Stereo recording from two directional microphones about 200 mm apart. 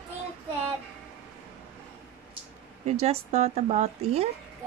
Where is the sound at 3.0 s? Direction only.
30° right (ahead or behind).